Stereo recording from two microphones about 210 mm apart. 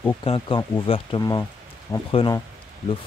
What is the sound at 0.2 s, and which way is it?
Speech, 25° left (ahead or behind).